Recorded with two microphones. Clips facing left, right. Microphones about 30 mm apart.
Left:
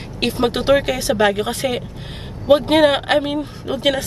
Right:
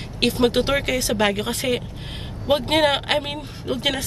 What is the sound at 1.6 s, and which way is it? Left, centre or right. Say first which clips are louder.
Speech: left 1 dB; centre.